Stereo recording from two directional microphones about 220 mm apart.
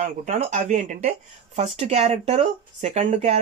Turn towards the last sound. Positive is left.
turn(degrees=-30)  # may be behind; listen again after turning